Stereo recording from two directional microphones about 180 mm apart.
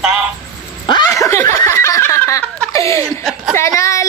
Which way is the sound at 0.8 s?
20° left (ahead or behind).